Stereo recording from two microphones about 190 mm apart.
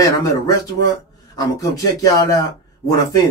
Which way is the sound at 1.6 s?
20° left (ahead or behind).